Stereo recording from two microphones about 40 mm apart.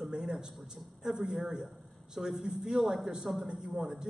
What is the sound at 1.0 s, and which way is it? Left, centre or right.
A man's voice, centre.